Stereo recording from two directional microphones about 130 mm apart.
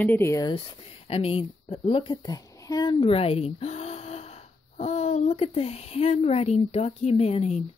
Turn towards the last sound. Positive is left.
turn(degrees=55)  # may be behind; listen again after turning